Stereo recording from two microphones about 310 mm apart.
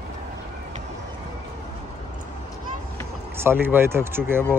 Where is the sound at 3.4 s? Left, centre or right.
Centre.